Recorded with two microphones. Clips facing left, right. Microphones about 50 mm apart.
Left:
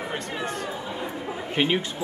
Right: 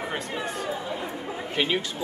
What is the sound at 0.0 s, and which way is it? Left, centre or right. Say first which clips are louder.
Chatter: even; centre.